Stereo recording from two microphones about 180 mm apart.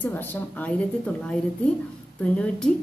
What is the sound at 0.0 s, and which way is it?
A woman's voice, 10° left (ahead or behind).